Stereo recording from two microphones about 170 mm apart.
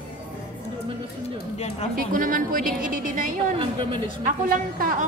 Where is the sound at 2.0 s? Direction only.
55° right (ahead or behind).